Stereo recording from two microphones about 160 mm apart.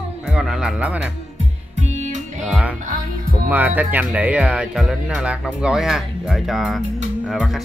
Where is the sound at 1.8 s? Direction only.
50° right (ahead or behind).